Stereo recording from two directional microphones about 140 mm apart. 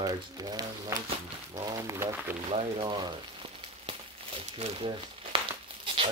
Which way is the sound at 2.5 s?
35° right (ahead or behind).